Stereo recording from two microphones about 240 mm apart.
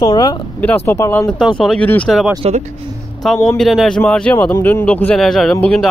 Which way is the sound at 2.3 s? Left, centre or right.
Right.